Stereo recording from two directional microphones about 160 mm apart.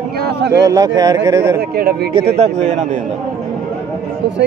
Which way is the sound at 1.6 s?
80° right.